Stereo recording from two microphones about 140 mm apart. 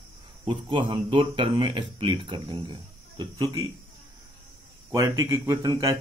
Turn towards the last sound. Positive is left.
turn(degrees=-25)  # may be behind; listen again after turning